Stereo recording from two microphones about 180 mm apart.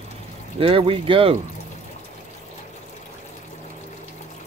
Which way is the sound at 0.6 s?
30° right (ahead or behind).